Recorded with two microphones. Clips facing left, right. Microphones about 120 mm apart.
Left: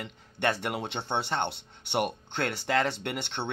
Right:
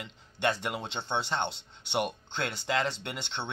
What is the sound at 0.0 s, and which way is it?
Speech, 55° left (ahead or behind).